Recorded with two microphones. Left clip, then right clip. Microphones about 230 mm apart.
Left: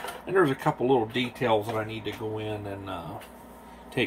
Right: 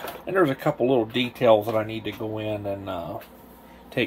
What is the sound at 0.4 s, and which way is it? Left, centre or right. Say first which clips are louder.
Speech: right 2 dB; centre.